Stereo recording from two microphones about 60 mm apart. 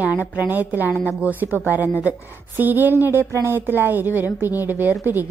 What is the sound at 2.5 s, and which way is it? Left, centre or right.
A woman's voice, right.